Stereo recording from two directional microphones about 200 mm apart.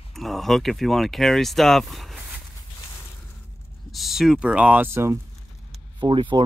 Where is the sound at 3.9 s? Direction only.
Centre (ahead or behind).